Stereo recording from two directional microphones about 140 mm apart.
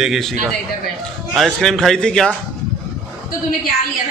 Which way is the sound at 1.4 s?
5° left (ahead or behind).